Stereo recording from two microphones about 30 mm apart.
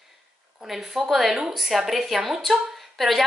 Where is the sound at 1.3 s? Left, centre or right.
Right.